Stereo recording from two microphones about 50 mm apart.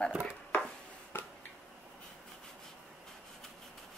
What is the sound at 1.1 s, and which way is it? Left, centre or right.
Finger snapping, left.